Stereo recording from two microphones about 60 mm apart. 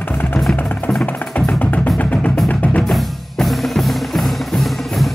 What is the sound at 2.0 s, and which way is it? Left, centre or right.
Music, left.